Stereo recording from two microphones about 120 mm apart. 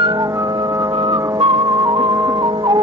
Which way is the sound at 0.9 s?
35° right (ahead or behind).